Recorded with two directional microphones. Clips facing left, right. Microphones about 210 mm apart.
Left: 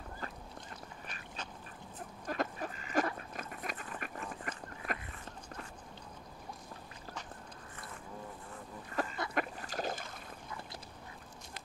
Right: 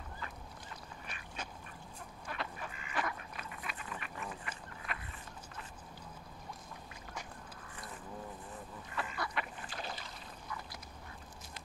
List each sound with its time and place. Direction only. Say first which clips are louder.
0.2 s boat: left 3 dB; 40° left (ahead or behind)
2.2 s duck: left 7 dB; 40° left (ahead or behind)
9.0 s duck: left 5 dB; 40° left (ahead or behind)
9.3 s boat: left 5 dB; 45° left (ahead or behind)